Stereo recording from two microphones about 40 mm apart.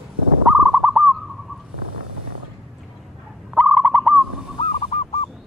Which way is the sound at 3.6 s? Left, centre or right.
Right.